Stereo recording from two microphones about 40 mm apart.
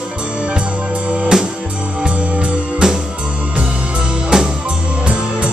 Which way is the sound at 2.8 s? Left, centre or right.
Centre.